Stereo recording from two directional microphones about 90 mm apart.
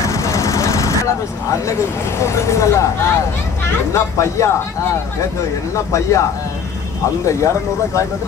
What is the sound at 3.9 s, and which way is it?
Speech, 35° left (ahead or behind).